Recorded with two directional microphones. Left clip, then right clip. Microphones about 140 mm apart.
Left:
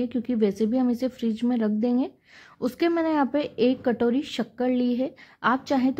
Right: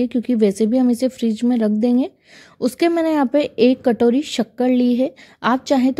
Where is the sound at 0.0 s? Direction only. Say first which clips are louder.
Right 7 dB; 40° right (ahead or behind).